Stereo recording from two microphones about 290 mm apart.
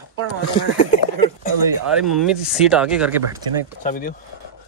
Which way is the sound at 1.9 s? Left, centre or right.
Centre.